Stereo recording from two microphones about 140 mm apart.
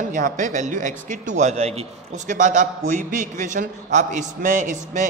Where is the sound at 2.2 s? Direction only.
65° right (ahead or behind).